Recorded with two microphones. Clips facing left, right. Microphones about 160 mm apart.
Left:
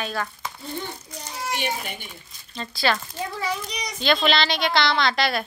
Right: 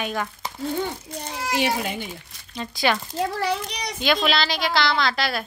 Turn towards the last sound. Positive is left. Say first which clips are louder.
# left 1 dB
turn(degrees=0)  # may be behind; listen again after turning